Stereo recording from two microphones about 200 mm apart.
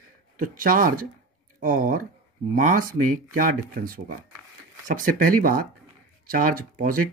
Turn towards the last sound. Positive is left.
turn(degrees=-45)  # may be behind; listen again after turning